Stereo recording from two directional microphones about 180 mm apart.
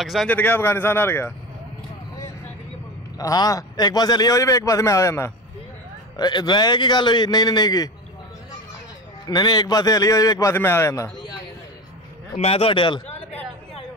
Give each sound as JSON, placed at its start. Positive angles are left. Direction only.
{"t": 0.0, "sound": "speech", "side_deg": 0}
{"t": 3.2, "sound": "a man's voice", "side_deg": 20}
{"t": 9.3, "sound": "a man's voice", "side_deg": 25}
{"t": 12.4, "sound": "a man's voice", "side_deg": 35}